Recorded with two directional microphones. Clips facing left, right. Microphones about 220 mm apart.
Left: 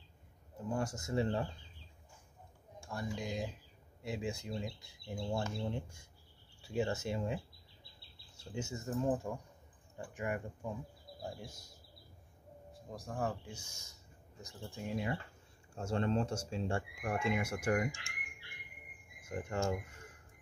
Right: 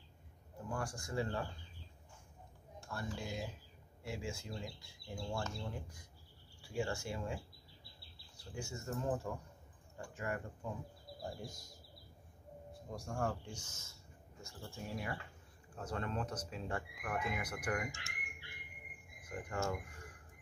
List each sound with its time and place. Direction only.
0.7 s speech: 20° left (ahead or behind)
2.9 s speech: 15° left (ahead or behind)
11.2 s speech: centre (ahead or behind)
12.9 s speech: centre (ahead or behind); by 17.8 s 25° left (ahead or behind)
19.2 s cricket: 25° left (ahead or behind)